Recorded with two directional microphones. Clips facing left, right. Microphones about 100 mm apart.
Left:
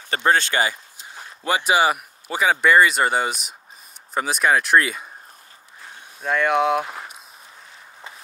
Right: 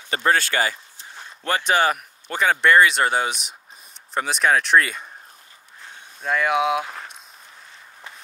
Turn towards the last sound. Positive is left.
turn(degrees=5)  # may be behind; listen again after turning